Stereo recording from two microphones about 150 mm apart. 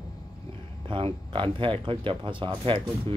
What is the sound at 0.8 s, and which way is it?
Speech, 35° right (ahead or behind).